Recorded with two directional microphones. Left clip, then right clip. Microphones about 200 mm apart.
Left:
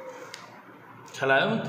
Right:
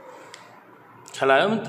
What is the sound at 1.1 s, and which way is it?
Speech, 50° right (ahead or behind).